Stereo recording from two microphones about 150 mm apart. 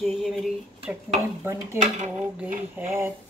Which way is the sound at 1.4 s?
15° right (ahead or behind).